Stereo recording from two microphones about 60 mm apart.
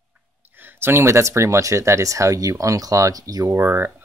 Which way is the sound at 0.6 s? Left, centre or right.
Right.